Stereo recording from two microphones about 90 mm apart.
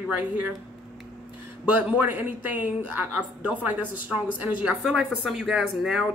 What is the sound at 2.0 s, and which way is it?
Speech, 20° right (ahead or behind).